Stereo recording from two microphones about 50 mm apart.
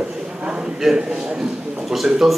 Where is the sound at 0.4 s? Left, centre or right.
Centre.